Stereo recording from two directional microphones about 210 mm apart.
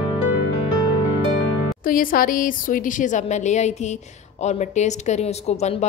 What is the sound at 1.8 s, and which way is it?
A woman's voice, 40° left (ahead or behind).